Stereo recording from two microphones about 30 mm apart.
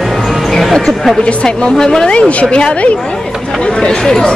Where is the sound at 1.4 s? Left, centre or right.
Left.